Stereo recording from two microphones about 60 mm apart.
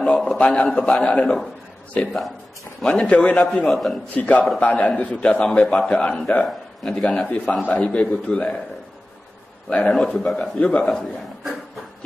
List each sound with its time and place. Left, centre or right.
0.1 s a man's voice: centre
0.4 s a man's voice: centre
3.4 s a man's voice: centre
4.2 s a man's voice: left
6.4 s speech: centre
7.1 s a man's voice: centre
9.7 s a man's voice: centre
9.9 s a man's voice: centre
10.6 s a man's voice: left